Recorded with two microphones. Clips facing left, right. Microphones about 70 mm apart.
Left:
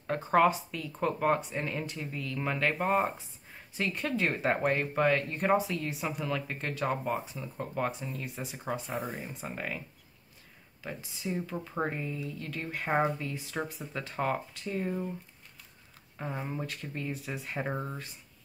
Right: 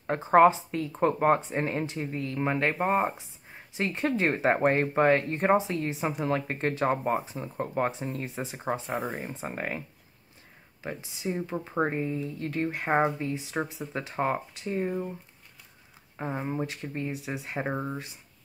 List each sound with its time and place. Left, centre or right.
0.0 s speech: right
16.2 s speech: right